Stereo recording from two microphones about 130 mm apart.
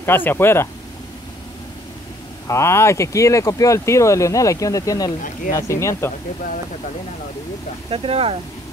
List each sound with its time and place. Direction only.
0.0 s speech: 15° left (ahead or behind)
2.4 s speech: 20° left (ahead or behind)
7.9 s speech: 45° right (ahead or behind)